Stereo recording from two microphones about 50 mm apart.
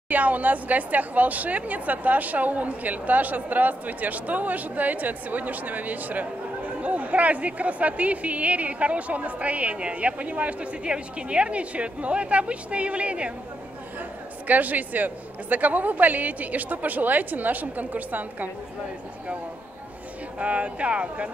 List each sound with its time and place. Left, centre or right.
0.1 s speech: right
14.5 s speech: right
20.3 s speech: right